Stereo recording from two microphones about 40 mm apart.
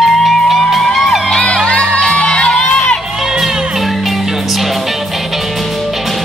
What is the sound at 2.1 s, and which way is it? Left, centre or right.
Music, left.